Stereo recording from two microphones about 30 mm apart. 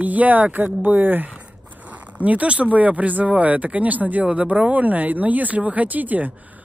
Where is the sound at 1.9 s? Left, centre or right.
Right.